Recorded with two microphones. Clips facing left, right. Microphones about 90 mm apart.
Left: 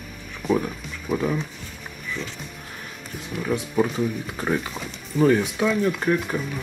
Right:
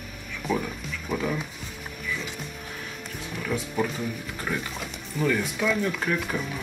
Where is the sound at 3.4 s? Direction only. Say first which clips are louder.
Left 5 dB; 20° left (ahead or behind).